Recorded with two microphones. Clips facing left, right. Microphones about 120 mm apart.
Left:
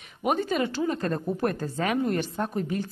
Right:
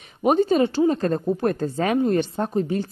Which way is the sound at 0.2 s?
30° right (ahead or behind).